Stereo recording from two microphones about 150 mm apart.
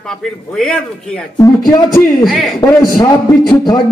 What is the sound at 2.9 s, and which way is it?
Speech, 25° left (ahead or behind).